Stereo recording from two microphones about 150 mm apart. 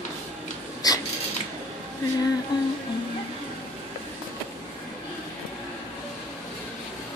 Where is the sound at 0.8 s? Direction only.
25° left (ahead or behind).